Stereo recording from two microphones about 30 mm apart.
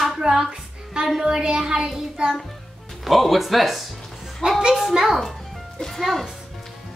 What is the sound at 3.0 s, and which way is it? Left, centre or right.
Speech, centre.